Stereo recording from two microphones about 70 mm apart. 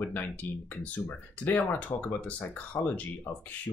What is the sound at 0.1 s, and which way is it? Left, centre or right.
Speech, left.